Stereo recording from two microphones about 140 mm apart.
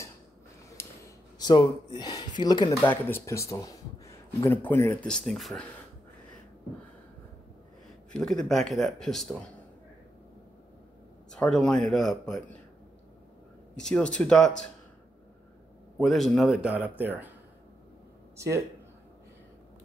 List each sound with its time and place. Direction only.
0.8 s a sound: 15° left (ahead or behind)
1.4 s speech: 30° left (ahead or behind)
2.8 s speech: 15° left (ahead or behind)
5.1 s speech: centre (ahead or behind)
8.1 s speech: 5° left (ahead or behind)
11.3 s speech: 5° left (ahead or behind)
13.7 s speech: 5° left (ahead or behind)
16.0 s a man's voice: centre (ahead or behind)